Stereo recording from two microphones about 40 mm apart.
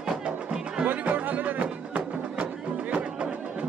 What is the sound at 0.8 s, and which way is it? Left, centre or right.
Music, right.